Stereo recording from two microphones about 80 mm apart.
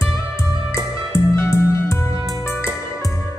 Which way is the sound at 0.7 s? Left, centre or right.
Left.